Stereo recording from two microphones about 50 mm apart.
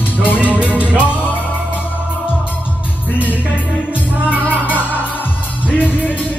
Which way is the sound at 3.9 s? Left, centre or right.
Right.